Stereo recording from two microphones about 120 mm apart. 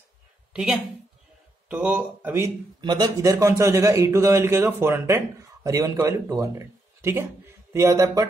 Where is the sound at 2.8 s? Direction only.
40° right (ahead or behind).